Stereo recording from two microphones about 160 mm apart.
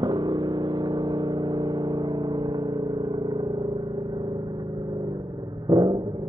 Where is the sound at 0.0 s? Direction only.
25° right (ahead or behind).